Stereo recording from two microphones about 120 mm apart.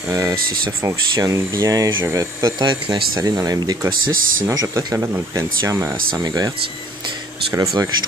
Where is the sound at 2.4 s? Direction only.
40° right (ahead or behind).